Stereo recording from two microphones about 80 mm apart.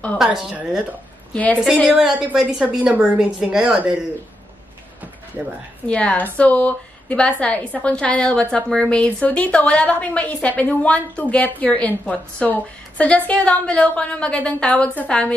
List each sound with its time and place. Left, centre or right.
0.2 s a woman's voice: centre
1.3 s a woman's voice: centre
1.9 s a woman's voice: centre
5.9 s a woman's voice: centre